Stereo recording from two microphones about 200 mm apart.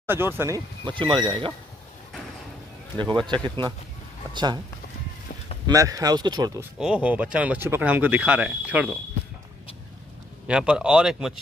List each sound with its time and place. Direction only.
0.0 s speech: 10° right (ahead or behind)
0.8 s speech: 25° right (ahead or behind)
3.0 s speech: 25° right (ahead or behind)
5.7 s speech: 15° right (ahead or behind)
6.8 s speech: 5° right (ahead or behind)
10.4 s speech: 5° right (ahead or behind)